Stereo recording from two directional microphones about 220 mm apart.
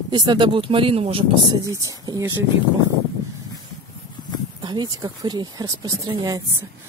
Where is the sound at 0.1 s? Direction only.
20° right (ahead or behind).